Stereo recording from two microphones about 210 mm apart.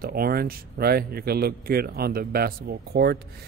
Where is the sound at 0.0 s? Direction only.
45° right (ahead or behind).